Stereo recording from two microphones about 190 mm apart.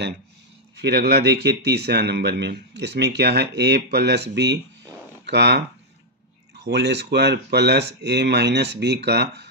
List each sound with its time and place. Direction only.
0.7 s speech: 60° right (ahead or behind)
6.6 s speech: 65° right (ahead or behind)